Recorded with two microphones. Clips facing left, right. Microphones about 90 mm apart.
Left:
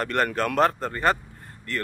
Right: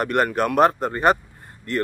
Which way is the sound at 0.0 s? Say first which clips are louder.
Right 4 dB; 15° right (ahead or behind).